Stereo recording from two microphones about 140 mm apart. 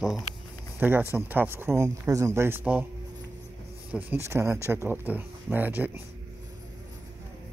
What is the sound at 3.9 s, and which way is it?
Speech, 15° right (ahead or behind).